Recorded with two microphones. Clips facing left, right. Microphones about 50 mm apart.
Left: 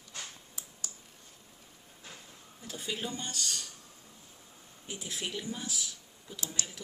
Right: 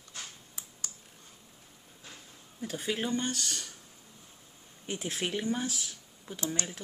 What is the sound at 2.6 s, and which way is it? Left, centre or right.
Speech, right.